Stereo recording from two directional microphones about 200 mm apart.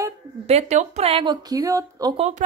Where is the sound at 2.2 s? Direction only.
35° right (ahead or behind).